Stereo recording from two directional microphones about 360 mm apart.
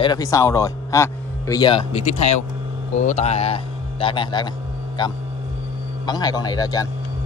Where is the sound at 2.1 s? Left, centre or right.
Left.